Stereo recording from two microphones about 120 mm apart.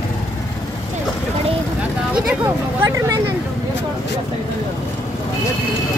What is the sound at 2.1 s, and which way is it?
Speech, 15° right (ahead or behind).